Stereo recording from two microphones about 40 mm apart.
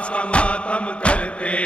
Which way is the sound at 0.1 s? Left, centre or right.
Left.